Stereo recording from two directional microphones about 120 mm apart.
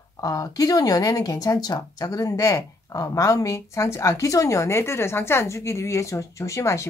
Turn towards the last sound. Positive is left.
turn(degrees=25)  # may be behind; listen again after turning